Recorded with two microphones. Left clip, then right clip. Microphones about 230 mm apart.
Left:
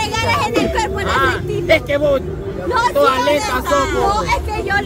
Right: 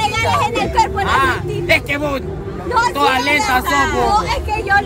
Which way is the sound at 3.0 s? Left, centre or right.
Right.